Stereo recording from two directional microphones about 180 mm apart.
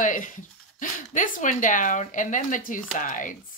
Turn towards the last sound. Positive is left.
turn(degrees=45)  # may be behind; listen again after turning